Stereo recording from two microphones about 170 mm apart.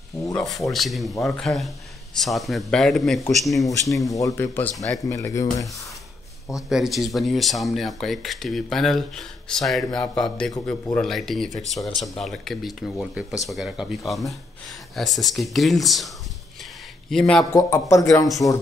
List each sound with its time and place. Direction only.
0.3 s speech: 20° left (ahead or behind)
0.7 s speech: centre (ahead or behind)
4.0 s a man's voice: 20° left (ahead or behind)
6.7 s speech: centre (ahead or behind)
17.1 s speech: 5° left (ahead or behind)
17.5 s a man's voice: 15° left (ahead or behind)